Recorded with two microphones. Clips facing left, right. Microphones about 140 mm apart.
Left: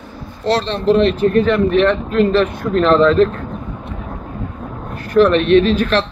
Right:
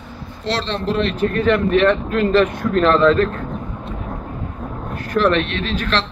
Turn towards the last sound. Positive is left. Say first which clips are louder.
# left 9 dB
turn(degrees=10)  # may be behind; listen again after turning